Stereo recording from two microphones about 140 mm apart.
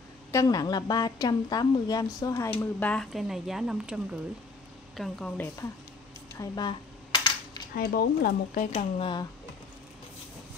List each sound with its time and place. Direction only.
0.3 s a woman's voice: 25° left (ahead or behind)
2.6 s speech: 10° left (ahead or behind)
3.1 s speech: centre (ahead or behind)
6.3 s cutlery: 30° left (ahead or behind)
7.7 s speech: 90° left
8.7 s speech: 40° left (ahead or behind)